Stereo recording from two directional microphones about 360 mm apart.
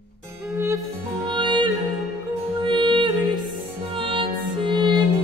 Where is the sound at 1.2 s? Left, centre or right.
Centre.